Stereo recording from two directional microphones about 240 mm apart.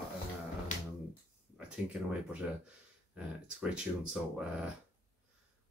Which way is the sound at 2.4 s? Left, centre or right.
Centre.